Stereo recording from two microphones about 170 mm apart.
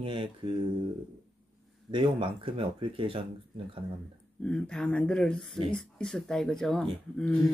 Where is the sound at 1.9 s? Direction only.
30° right (ahead or behind).